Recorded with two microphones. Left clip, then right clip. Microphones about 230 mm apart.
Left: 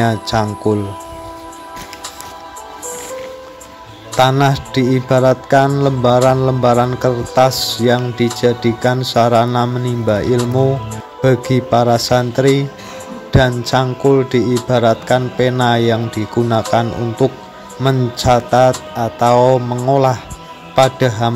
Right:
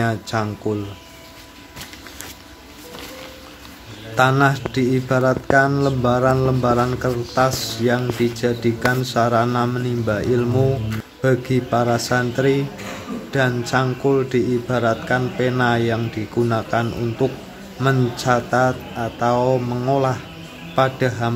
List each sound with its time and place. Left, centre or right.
0.0 s speech: left
4.2 s speech: left